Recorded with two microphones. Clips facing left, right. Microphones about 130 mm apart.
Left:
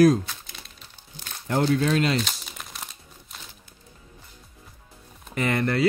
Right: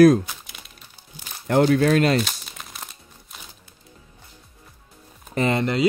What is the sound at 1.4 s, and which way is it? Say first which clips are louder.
Speech: right 5 dB; 65° right (ahead or behind).